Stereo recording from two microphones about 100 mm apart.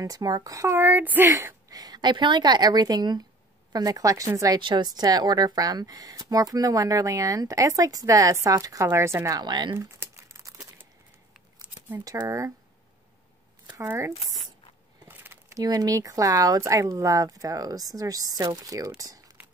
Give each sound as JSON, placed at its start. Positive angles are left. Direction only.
{"t": 0.0, "sound": "speech", "side_deg": -40}
{"t": 0.7, "sound": "a woman's voice", "side_deg": -20}
{"t": 1.3, "sound": "a woman's voice", "side_deg": -35}
{"t": 4.6, "sound": "a woman's voice", "side_deg": -50}
{"t": 9.4, "sound": "a woman's voice", "side_deg": -45}
{"t": 9.8, "sound": "typing", "side_deg": -25}
{"t": 12.0, "sound": "speech", "side_deg": -35}
{"t": 13.8, "sound": "a woman's voice", "side_deg": -25}
{"t": 15.0, "sound": "a sound", "side_deg": -20}
{"t": 15.5, "sound": "speech", "side_deg": -40}
{"t": 18.9, "sound": "crumpling", "side_deg": -35}